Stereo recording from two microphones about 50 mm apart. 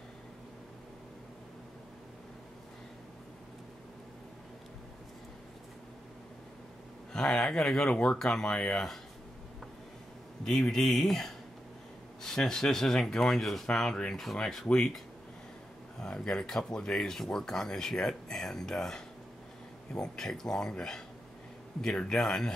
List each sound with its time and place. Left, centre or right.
7.1 s speech: centre
7.9 s speech: left
8.2 s speech: centre
10.4 s speech: centre
16.0 s speech: centre